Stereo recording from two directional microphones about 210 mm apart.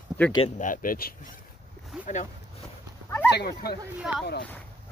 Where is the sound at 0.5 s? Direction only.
40° left (ahead or behind).